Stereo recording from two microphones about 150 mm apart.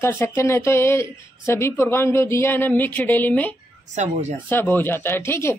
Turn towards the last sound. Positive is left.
turn(degrees=15)  # may be behind; listen again after turning